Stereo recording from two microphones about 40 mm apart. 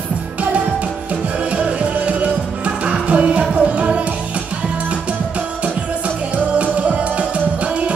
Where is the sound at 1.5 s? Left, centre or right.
Right.